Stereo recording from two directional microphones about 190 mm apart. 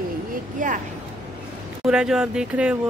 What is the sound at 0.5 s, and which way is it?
Speech, 45° right (ahead or behind).